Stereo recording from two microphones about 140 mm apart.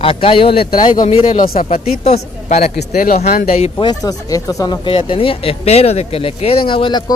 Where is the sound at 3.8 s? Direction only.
30° left (ahead or behind).